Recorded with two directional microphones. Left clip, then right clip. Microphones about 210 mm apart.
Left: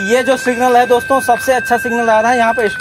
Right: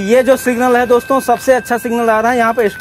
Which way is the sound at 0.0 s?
50° right (ahead or behind).